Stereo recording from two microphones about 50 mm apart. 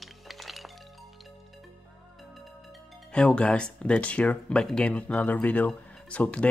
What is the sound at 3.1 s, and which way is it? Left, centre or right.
Speech, centre.